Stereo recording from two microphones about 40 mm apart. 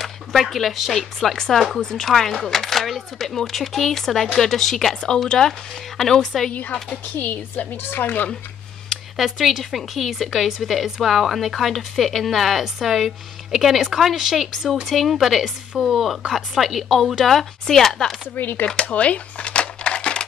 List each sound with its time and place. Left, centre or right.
0.0 s a woman's voice: centre
1.8 s a woman's voice: centre
2.0 s speech: centre
7.2 s a woman's voice: left
7.7 s speech: left
9.2 s a woman's voice: centre
18.3 s a woman's voice: left
18.9 s a sound: left